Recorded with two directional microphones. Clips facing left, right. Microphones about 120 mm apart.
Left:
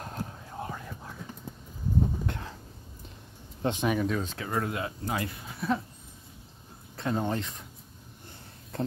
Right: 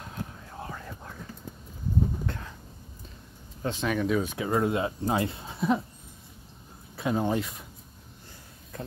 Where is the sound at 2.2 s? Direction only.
25° left (ahead or behind).